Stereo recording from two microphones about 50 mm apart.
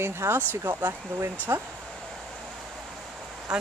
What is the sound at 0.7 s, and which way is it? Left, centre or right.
Speech, right.